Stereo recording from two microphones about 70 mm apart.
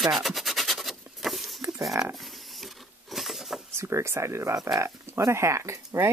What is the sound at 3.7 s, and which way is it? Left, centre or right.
Speech, right.